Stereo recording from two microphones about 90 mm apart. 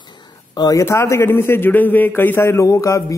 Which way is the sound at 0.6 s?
40° left (ahead or behind).